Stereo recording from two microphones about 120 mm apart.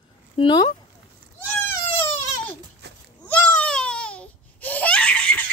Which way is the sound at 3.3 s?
10° left (ahead or behind).